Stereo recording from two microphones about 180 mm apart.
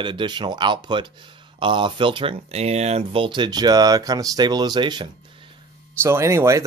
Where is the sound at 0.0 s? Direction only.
25° right (ahead or behind).